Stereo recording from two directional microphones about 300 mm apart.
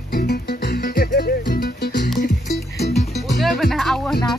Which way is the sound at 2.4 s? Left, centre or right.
Centre.